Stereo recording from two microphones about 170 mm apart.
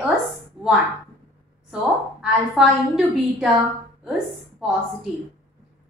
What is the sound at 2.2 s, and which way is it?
A woman's voice, centre (ahead or behind).